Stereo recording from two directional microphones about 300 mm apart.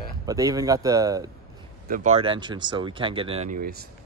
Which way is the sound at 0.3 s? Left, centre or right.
Centre.